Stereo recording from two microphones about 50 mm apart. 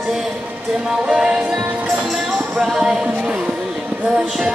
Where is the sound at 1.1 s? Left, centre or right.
Centre.